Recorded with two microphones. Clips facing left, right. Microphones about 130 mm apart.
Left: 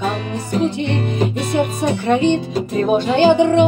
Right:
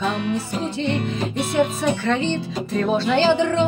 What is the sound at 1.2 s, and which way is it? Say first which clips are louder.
Speech: left 3 dB; 15° left (ahead or behind).